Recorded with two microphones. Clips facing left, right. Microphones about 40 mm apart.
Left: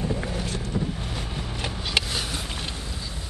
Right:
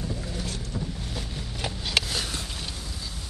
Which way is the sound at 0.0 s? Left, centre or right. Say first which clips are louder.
Left 6 dB; left.